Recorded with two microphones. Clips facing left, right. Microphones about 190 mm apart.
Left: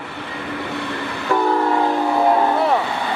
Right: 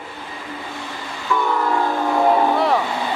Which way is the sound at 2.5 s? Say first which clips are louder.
Even; centre (ahead or behind).